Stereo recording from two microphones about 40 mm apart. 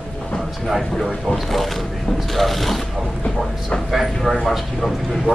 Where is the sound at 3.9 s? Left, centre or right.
Centre.